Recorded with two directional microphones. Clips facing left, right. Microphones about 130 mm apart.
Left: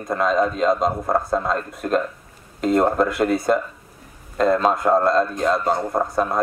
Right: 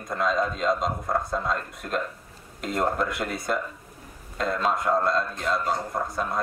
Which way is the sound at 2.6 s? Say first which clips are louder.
Left 8 dB; 45° left (ahead or behind).